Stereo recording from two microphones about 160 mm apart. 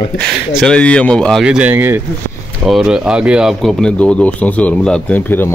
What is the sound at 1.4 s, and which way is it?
A man's voice, 5° right (ahead or behind).